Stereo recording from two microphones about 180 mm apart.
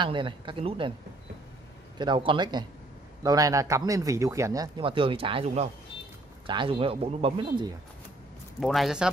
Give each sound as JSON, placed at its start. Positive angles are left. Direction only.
{"t": 0.0, "sound": "speech", "side_deg": -25}
{"t": 2.0, "sound": "speech", "side_deg": -25}
{"t": 4.7, "sound": "speech", "side_deg": -30}
{"t": 8.5, "sound": "a man's voice", "side_deg": 0}